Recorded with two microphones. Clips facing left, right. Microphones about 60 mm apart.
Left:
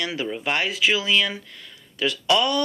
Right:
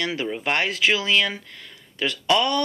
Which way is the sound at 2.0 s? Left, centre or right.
Right.